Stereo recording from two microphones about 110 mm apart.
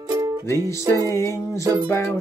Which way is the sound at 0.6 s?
25° left (ahead or behind).